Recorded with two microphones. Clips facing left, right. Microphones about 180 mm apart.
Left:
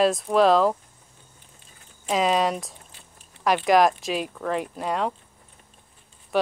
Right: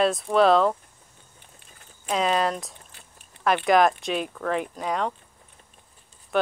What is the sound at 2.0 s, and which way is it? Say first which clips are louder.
Speech: left 2 dB; centre (ahead or behind).